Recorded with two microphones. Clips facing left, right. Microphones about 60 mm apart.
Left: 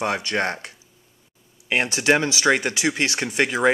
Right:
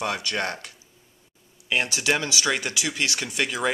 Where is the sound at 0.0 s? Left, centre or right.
Left.